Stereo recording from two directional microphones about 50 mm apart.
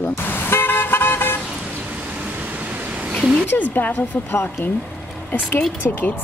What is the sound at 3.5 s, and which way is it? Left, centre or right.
Speech, left.